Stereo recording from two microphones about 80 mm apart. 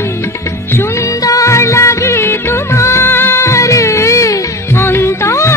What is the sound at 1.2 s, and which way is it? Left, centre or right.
Music of bollywood, left.